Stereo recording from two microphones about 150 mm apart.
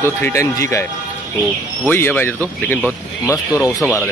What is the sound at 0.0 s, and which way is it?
Speech, 15° left (ahead or behind).